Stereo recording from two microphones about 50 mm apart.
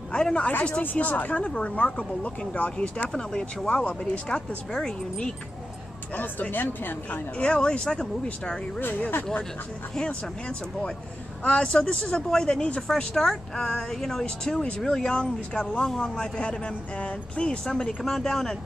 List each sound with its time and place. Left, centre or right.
0.1 s a woman's voice: left
3.1 s speech: centre
6.5 s a woman's voice: left
7.1 s speech: left
11.4 s speech: centre
12.8 s speech: centre